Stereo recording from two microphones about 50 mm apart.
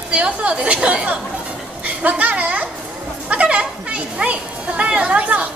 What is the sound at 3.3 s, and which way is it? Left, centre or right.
Speech, right.